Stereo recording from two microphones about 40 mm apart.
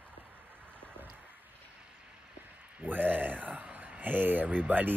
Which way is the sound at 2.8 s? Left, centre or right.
Right.